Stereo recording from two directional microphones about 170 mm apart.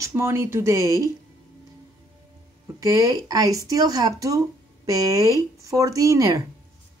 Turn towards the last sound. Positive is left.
turn(degrees=-20)  # may be behind; listen again after turning